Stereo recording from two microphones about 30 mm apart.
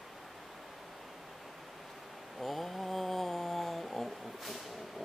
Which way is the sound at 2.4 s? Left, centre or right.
Centre.